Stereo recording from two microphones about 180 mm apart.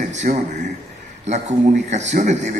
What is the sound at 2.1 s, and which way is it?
Speech, 40° right (ahead or behind).